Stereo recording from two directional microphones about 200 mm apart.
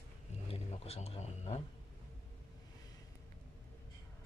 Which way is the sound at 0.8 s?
30° left (ahead or behind).